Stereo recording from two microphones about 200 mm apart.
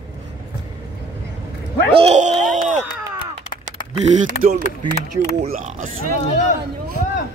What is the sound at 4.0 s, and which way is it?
Speech, 40° right (ahead or behind).